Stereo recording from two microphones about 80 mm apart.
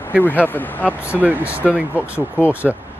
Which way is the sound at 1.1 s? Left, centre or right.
Right.